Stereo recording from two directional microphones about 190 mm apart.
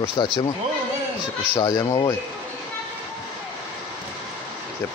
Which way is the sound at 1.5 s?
20° left (ahead or behind).